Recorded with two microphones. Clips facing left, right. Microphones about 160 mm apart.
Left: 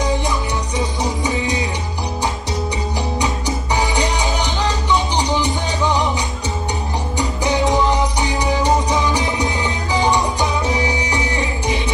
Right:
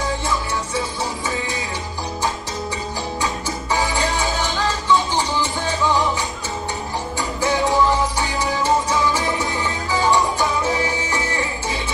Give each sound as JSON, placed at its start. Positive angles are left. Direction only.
{"t": 0.0, "sound": "music", "side_deg": 15}
{"t": 3.2, "sound": "music", "side_deg": 20}
{"t": 7.2, "sound": "music", "side_deg": 20}